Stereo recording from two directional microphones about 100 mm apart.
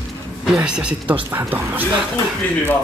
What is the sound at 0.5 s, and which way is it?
Speech, 10° right (ahead or behind).